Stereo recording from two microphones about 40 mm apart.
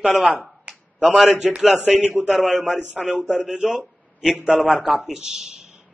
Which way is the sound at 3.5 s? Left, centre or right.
Right.